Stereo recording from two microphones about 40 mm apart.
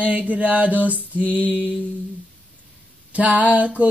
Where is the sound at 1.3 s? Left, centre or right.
Right.